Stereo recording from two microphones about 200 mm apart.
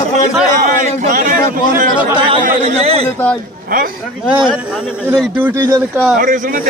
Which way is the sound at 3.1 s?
10° left (ahead or behind).